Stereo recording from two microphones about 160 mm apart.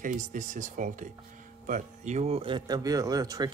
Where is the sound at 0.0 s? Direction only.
55° right (ahead or behind).